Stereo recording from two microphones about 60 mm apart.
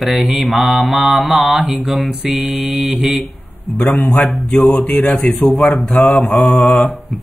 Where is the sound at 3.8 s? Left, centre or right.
Centre.